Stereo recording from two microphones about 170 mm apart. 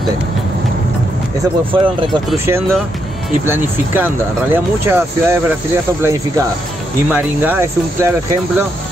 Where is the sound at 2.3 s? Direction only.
15° right (ahead or behind).